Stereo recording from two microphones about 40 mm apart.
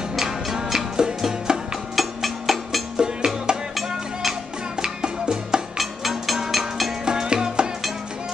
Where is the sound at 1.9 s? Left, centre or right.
Centre.